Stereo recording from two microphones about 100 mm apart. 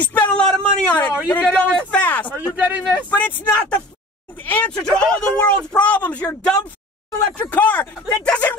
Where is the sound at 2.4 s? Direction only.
15° right (ahead or behind).